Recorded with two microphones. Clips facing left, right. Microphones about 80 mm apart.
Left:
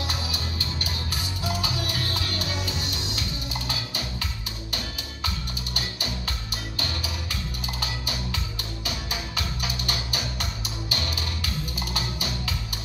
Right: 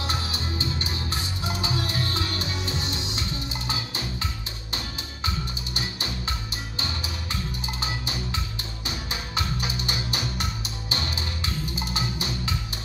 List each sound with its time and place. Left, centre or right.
0.0 s music: right
5.8 s music: right
7.8 s music: right